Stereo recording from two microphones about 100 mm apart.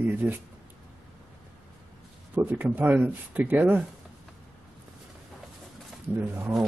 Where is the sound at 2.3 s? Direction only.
20° right (ahead or behind).